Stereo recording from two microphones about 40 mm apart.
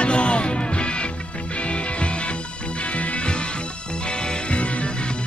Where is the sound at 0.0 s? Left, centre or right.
Left.